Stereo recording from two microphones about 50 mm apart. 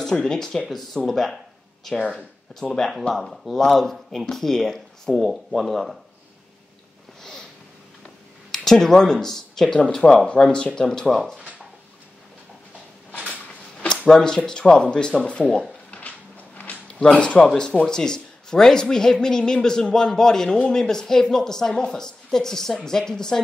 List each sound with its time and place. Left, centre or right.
0.0 s a man's voice: centre
0.7 s speech: centre
2.0 s a man's voice: centre
3.2 s speech: centre
8.5 s a man's voice: centre
11.3 s a sound: right
14.0 s a man's voice: centre
16.8 s a man's voice: centre